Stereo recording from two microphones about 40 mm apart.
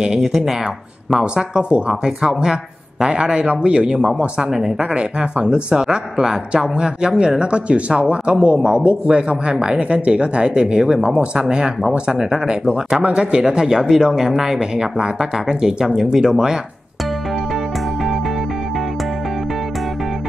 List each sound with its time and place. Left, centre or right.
0.2 s speech: centre
1.1 s speech: right
11.3 s speech: centre